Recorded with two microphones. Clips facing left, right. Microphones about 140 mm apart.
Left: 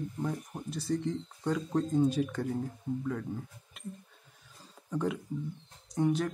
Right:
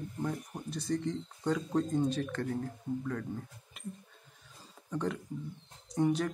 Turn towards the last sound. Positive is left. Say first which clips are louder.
# even
turn(degrees=0)  # may be behind; listen again after turning